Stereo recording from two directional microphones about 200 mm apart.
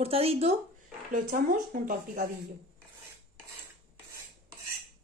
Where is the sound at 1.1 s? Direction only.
45° right (ahead or behind).